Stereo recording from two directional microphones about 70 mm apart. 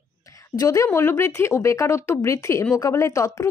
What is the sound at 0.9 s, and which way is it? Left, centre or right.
Speech, left.